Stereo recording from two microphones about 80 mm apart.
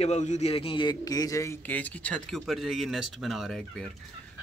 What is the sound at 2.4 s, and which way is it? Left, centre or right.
Speech, centre.